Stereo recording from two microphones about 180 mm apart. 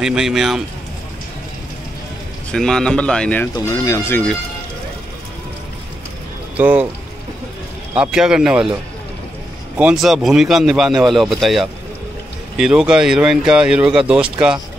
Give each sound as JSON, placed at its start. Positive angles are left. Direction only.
{"t": 0.0, "sound": "speech", "side_deg": -5}
{"t": 2.5, "sound": "speech", "side_deg": 5}
{"t": 3.5, "sound": "speech", "side_deg": 15}
{"t": 6.5, "sound": "speech", "side_deg": -10}
{"t": 7.9, "sound": "speech", "side_deg": -5}
{"t": 9.8, "sound": "speech", "side_deg": -5}